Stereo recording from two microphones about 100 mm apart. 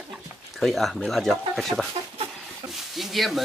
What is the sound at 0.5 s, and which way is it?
Speech, centre (ahead or behind).